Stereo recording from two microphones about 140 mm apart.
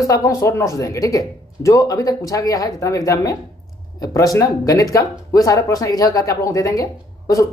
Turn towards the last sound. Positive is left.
turn(degrees=25)  # may be behind; listen again after turning